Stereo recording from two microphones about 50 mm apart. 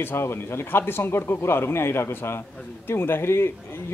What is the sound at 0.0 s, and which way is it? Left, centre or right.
Speech, left.